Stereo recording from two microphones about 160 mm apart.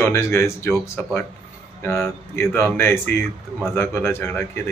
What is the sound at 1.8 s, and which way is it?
Chuckle, 15° left (ahead or behind).